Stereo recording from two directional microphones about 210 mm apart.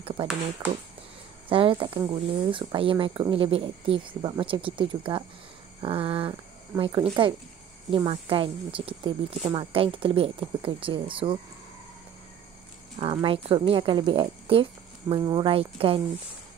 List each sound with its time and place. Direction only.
0.0 s speech: 25° right (ahead or behind)
1.5 s speech: 25° right (ahead or behind)
13.0 s speech: 25° right (ahead or behind)